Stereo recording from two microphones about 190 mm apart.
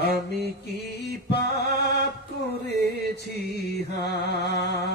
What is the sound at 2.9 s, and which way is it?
Music, 60° left (ahead or behind).